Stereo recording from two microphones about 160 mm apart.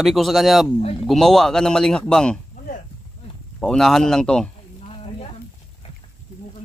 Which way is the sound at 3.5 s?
5° left (ahead or behind).